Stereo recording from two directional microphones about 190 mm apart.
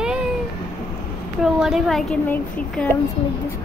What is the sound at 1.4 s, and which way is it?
Speech, centre (ahead or behind).